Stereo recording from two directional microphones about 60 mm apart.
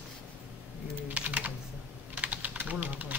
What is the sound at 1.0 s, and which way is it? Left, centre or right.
Typing, right.